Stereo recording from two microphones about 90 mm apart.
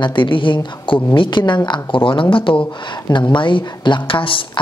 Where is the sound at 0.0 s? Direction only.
65° left (ahead or behind).